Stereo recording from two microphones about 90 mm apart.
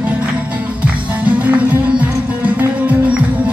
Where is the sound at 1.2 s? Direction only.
15° right (ahead or behind).